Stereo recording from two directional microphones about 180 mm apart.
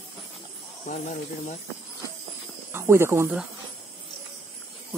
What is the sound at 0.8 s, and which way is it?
Speech, 45° left (ahead or behind).